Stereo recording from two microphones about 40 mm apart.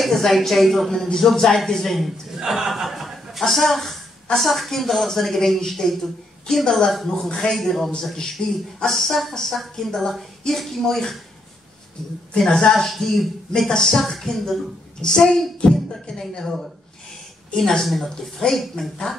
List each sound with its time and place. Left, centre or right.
0.1 s speech: centre
0.9 s speech: centre
2.0 s a man's voice: centre
7.5 s speech: centre
8.4 s speech: left
8.8 s speech: centre
12.4 s a man's voice: centre
12.7 s speech: centre